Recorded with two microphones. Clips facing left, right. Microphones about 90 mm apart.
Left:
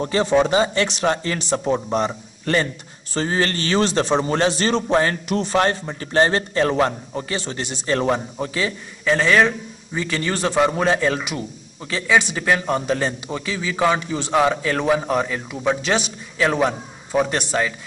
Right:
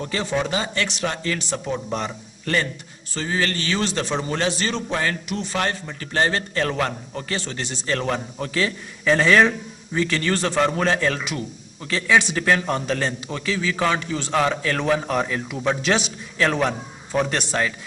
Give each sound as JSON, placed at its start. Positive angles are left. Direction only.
{"t": 0.0, "sound": "a man's voice", "side_deg": 30}
{"t": 8.5, "sound": "a man's voice", "side_deg": 5}